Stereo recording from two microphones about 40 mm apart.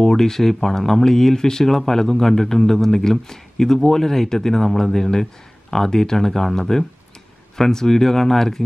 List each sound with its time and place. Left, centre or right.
0.0 s speech: centre